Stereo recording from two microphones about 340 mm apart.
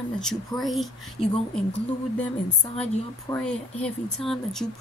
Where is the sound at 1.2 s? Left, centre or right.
Centre.